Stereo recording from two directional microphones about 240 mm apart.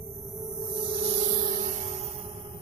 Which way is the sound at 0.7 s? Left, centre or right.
Right.